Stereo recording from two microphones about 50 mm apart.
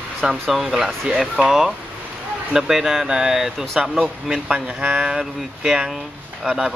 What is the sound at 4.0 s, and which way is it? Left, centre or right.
Speech, right.